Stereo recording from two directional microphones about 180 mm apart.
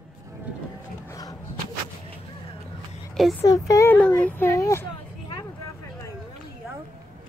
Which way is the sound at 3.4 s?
20° left (ahead or behind).